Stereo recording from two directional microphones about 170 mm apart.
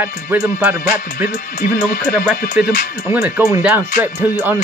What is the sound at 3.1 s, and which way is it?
Speech, 10° right (ahead or behind).